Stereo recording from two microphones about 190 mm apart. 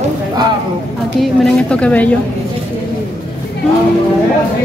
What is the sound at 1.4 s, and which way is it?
Speech, 5° left (ahead or behind).